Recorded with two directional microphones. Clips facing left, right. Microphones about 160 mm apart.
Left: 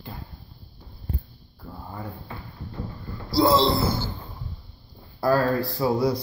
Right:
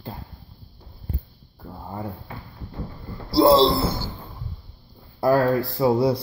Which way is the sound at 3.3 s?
30° right (ahead or behind).